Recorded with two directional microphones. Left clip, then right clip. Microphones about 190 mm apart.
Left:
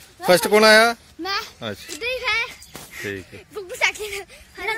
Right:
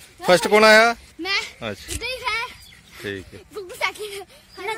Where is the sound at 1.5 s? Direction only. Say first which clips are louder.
Even; 5° left (ahead or behind).